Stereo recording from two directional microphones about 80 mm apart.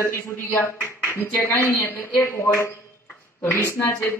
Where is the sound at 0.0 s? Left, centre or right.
Left.